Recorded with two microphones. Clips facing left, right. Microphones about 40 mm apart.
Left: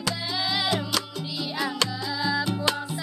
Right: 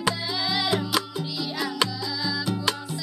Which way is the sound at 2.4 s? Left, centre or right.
Centre.